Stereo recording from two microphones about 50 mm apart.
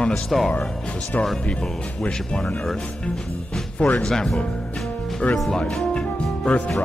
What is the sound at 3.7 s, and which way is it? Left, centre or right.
Speech, left.